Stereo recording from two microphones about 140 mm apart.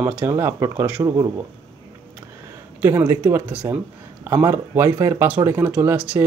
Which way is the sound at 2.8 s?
15° right (ahead or behind).